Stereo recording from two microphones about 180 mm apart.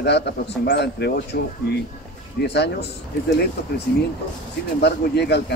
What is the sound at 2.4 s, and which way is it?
Speech, 70° left (ahead or behind).